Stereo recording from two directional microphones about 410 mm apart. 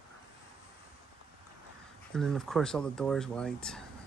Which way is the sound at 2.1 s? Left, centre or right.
Centre.